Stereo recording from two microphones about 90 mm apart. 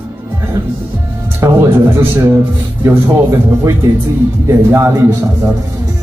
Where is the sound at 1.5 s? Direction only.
25° right (ahead or behind).